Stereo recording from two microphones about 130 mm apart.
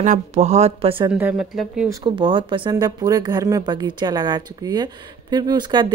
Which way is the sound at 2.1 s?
40° right (ahead or behind).